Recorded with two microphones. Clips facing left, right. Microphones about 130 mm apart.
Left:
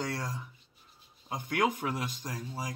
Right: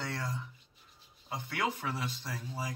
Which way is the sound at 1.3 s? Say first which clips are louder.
Left 5 dB; 15° left (ahead or behind).